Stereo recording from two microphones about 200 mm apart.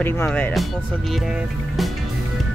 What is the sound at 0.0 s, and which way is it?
Speech, 10° left (ahead or behind).